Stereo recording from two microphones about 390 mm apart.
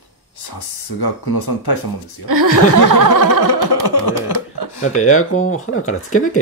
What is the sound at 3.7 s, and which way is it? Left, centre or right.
Speech, left.